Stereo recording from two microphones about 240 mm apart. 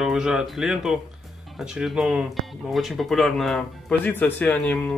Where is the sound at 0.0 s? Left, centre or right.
Centre.